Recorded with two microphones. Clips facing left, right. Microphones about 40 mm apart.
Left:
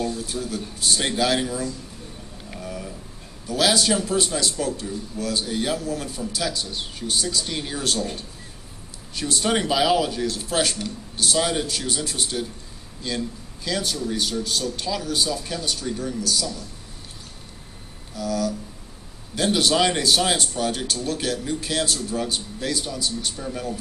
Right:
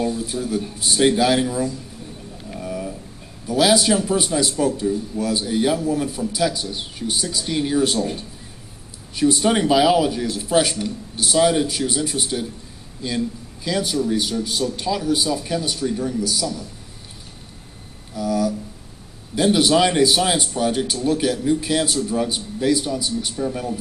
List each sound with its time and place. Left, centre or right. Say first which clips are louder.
0.0 s speech: right 4 dB; centre
2.6 s a sound: right 6 dB; centre
3.4 s speech: right 4 dB; centre
18.1 s speech: right 4 dB; centre